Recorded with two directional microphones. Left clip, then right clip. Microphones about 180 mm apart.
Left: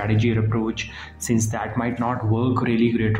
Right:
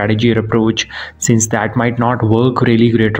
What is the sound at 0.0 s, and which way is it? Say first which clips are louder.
Speech: right 10 dB; 35° right (ahead or behind).